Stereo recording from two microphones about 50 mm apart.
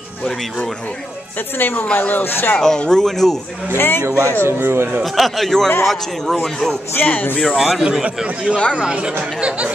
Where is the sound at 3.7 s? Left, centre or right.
Left.